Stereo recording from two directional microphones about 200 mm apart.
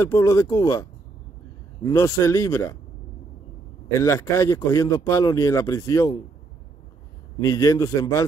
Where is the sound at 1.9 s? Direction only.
15° left (ahead or behind).